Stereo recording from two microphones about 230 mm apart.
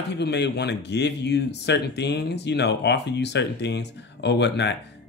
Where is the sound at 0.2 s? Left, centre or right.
Left.